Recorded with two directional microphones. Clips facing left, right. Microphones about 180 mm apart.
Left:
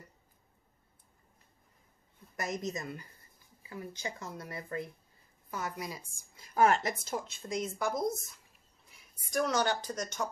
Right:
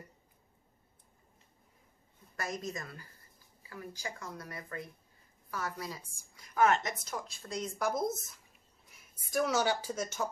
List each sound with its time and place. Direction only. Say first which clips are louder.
2.3 s a woman's voice: left 2 dB; 20° left (ahead or behind)
6.3 s speech: left 1 dB; 30° left (ahead or behind)
7.8 s speech: right 2 dB; centre (ahead or behind)